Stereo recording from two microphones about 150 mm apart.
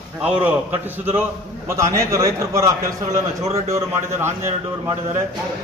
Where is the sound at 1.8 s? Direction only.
20° right (ahead or behind).